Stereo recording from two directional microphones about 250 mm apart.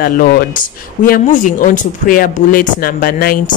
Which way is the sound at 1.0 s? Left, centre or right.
Left.